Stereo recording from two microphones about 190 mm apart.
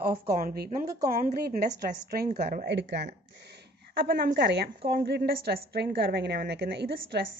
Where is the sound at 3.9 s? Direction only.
50° right (ahead or behind).